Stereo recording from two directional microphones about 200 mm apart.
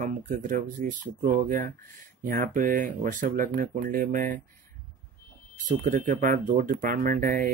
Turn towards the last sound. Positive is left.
turn(degrees=-45)  # may be behind; listen again after turning